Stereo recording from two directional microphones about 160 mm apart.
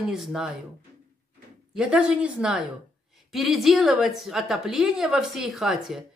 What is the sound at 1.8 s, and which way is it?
A woman's voice, 5° right (ahead or behind).